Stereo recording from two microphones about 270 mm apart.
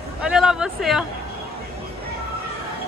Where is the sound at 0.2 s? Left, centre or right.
Centre.